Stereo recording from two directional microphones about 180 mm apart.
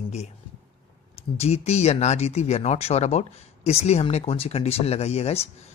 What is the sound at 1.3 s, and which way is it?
Speech, 35° left (ahead or behind).